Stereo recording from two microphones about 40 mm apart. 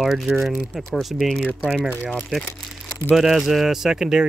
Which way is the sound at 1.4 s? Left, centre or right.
Left.